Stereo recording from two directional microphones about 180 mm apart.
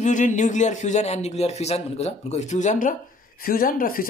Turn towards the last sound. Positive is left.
turn(degrees=55)  # may be behind; listen again after turning